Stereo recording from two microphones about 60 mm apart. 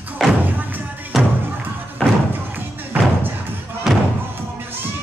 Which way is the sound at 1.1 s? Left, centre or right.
Centre.